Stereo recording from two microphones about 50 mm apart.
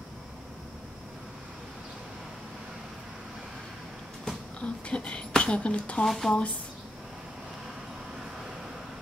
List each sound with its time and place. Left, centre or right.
4.2 s a woman's voice: centre
6.0 s speech: centre